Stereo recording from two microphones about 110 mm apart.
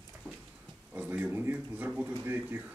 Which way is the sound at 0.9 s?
15° right (ahead or behind).